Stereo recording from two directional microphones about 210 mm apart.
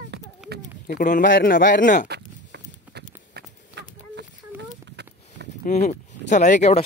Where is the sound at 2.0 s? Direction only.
50° right (ahead or behind).